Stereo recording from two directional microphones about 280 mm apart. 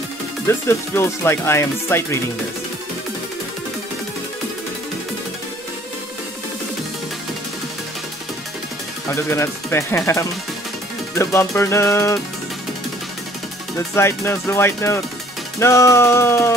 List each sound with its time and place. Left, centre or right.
0.5 s speech: centre
9.1 s speech: centre
13.9 s speech: centre